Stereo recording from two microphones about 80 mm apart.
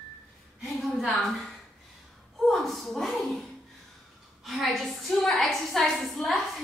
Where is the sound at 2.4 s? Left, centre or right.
Centre.